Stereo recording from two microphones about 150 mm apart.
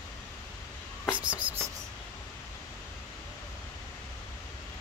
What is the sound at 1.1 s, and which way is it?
Writing, 10° right (ahead or behind).